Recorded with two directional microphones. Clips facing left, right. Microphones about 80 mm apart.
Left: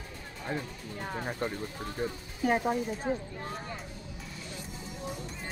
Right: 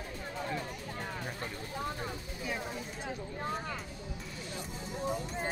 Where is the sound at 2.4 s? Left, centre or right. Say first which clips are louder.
Left 11 dB; left.